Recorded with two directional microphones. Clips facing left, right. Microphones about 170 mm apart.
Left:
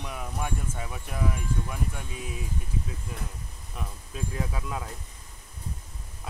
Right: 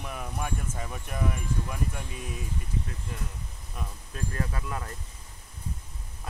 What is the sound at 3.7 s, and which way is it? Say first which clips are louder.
Speech: left 1 dB; 10° left (ahead or behind).